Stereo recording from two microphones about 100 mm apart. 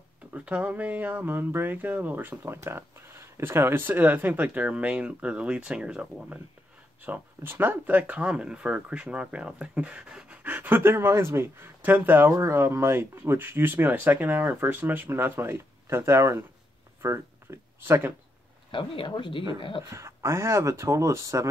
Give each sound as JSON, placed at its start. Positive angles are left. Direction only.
{"t": 0.3, "sound": "speech", "side_deg": -15}
{"t": 12.3, "sound": "speech", "side_deg": -30}
{"t": 18.7, "sound": "speech", "side_deg": 60}
{"t": 19.9, "sound": "speech", "side_deg": -30}